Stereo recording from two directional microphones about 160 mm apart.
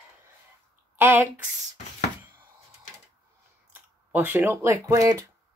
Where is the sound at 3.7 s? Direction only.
10° right (ahead or behind).